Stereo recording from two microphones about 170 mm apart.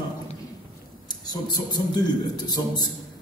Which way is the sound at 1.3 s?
25° left (ahead or behind).